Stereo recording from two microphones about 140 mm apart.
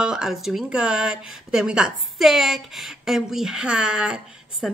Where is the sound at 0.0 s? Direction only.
5° right (ahead or behind).